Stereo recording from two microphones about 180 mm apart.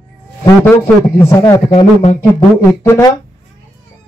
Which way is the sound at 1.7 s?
35° left (ahead or behind).